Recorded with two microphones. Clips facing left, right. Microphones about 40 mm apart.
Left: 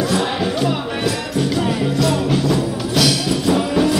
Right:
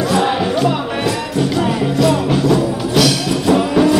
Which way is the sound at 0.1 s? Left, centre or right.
Centre.